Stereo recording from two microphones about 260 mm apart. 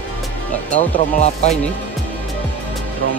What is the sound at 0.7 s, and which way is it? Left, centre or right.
Speech, left.